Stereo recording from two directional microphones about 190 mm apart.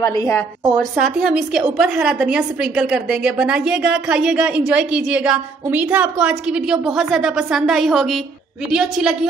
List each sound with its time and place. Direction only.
0.0 s a woman's voice: 15° left (ahead or behind)
1.0 s a woman's voice: 5° right (ahead or behind)